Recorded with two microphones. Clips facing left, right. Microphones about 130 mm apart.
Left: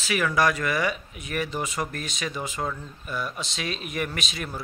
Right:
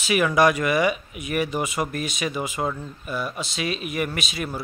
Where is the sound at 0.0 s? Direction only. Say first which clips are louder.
Right 5 dB; 15° right (ahead or behind).